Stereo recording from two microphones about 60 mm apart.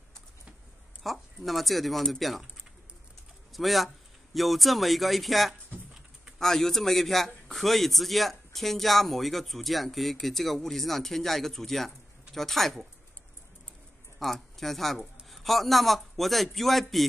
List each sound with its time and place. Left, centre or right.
1.0 s a man's voice: centre
3.5 s a man's voice: centre
14.2 s a man's voice: centre